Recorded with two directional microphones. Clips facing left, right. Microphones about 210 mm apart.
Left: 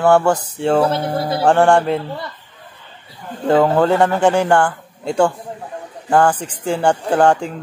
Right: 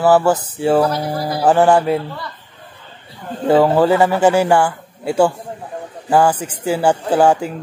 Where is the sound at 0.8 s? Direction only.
25° left (ahead or behind).